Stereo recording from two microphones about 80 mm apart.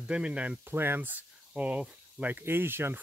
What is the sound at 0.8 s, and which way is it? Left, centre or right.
Speech, right.